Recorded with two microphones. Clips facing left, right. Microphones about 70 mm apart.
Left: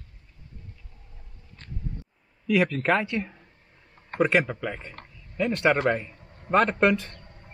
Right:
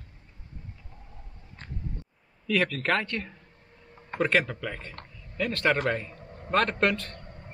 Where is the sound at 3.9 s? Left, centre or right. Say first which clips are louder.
Even; centre.